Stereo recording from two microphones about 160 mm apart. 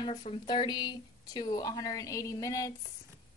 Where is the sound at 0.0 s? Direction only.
40° left (ahead or behind); by 2.7 s 20° left (ahead or behind).